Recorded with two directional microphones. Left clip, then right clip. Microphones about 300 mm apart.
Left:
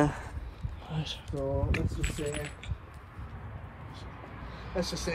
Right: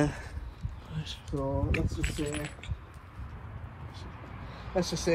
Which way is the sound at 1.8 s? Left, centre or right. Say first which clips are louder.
Right 1 dB; centre.